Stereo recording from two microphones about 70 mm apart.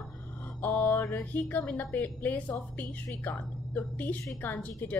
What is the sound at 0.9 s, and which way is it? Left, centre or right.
A woman's voice, left.